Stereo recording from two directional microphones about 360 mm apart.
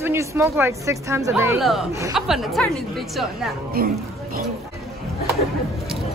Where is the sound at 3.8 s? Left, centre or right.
Right.